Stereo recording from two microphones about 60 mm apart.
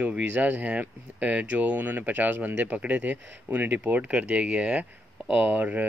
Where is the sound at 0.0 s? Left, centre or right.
Right.